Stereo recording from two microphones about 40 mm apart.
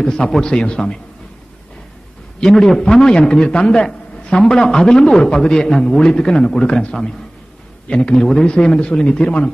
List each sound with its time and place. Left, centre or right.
0.0 s a man's voice: centre
2.4 s a man's voice: centre; by 6.9 s left
6.9 s a man's voice: centre